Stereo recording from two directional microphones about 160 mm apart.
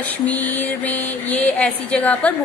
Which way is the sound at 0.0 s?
10° left (ahead or behind).